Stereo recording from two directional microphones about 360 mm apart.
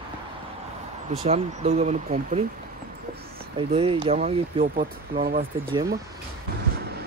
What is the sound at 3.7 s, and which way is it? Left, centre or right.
Speech, centre.